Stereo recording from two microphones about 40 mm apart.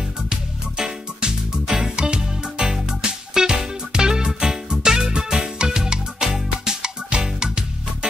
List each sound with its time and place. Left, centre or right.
0.3 s music: centre